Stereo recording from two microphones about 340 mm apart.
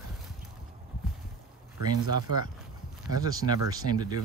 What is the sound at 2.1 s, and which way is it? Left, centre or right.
Speech, centre.